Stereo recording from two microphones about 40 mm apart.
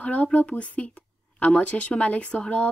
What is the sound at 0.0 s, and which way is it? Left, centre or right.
A woman's voice, left.